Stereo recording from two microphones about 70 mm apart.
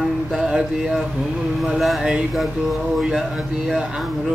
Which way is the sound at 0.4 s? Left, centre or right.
Centre.